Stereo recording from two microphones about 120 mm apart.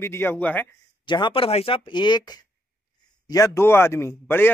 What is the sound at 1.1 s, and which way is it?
Speech, 40° left (ahead or behind).